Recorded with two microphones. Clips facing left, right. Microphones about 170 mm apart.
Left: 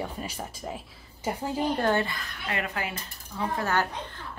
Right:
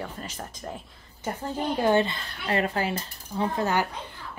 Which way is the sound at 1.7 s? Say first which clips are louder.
Right 6 dB; 15° right (ahead or behind).